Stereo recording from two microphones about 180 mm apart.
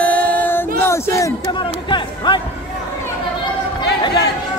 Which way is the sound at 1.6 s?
25° left (ahead or behind).